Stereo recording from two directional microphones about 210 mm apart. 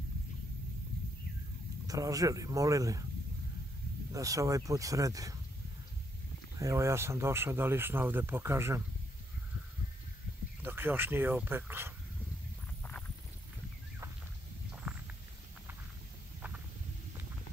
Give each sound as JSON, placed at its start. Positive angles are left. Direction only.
{"t": 1.9, "sound": "speech", "side_deg": -15}
{"t": 4.1, "sound": "speech", "side_deg": -15}
{"t": 6.6, "sound": "speech", "side_deg": -15}
{"t": 10.6, "sound": "speech", "side_deg": -10}